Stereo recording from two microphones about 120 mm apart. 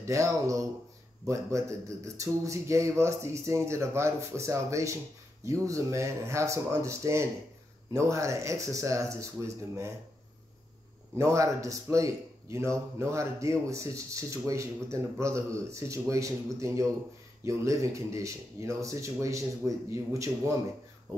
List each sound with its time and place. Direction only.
0.0 s speech: 25° right (ahead or behind)
11.1 s speech: 25° right (ahead or behind)